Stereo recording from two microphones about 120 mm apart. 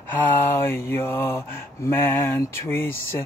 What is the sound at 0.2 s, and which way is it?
Speech, 20° left (ahead or behind).